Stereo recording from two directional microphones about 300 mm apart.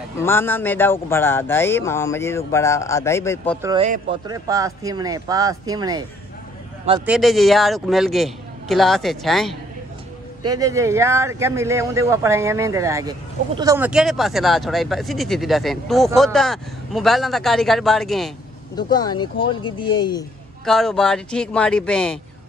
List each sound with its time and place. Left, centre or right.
0.2 s speech: centre
3.6 s speech: centre
7.1 s speech: centre
10.4 s speech: centre
18.8 s speech: centre
20.6 s speech: centre